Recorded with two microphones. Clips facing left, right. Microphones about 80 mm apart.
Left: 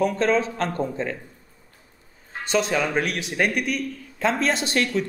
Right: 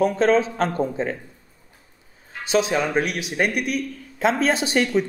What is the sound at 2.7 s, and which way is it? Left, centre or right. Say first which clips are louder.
A man's voice: right 1 dB; centre.